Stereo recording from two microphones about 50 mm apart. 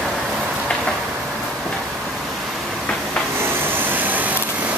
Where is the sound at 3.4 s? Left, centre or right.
Right.